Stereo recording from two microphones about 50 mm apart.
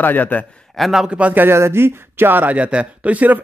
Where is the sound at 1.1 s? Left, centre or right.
Right.